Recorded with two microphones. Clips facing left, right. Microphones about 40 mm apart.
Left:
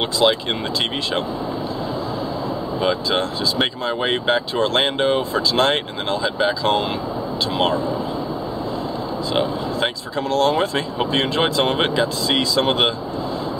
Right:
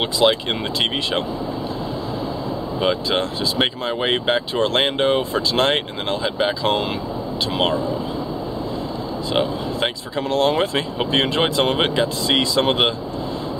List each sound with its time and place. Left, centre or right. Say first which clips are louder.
0.2 s speech: right 1 dB; centre
2.8 s speech: even; centre
9.3 s speech: right 1 dB; centre